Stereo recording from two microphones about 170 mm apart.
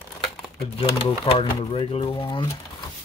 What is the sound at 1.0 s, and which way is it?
Speech, 35° left (ahead or behind).